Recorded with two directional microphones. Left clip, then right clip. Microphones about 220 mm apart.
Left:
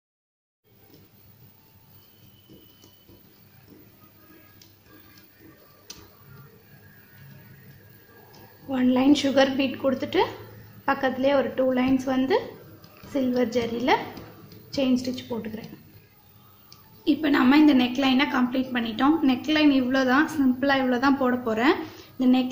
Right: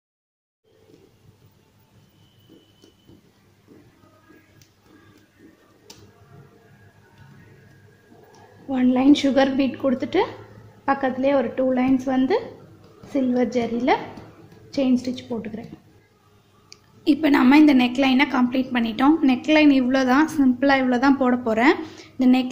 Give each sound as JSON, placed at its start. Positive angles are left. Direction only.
{"t": 8.6, "sound": "a woman's voice", "side_deg": -25}
{"t": 16.7, "sound": "a woman's voice", "side_deg": -25}